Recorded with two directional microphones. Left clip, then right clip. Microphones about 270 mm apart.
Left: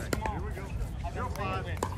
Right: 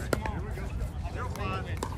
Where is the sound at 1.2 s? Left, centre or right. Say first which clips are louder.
Left 1 dB; centre.